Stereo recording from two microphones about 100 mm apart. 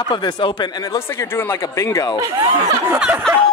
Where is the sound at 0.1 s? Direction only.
50° left (ahead or behind).